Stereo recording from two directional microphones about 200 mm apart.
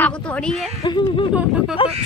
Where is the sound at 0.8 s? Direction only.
25° left (ahead or behind).